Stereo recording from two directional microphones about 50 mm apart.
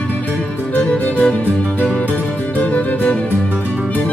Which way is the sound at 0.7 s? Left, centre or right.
Left.